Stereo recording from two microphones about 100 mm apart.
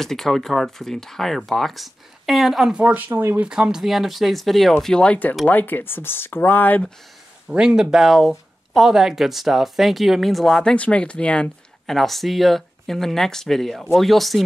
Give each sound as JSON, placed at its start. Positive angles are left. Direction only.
{"t": 0.0, "sound": "speech", "side_deg": 5}
{"t": 2.8, "sound": "speech", "side_deg": -20}
{"t": 3.4, "sound": "speech", "side_deg": -10}
{"t": 7.4, "sound": "speech", "side_deg": -5}